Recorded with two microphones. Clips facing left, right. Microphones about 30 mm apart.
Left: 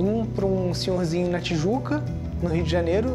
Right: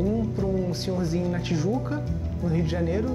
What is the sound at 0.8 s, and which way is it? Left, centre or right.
Speech, left.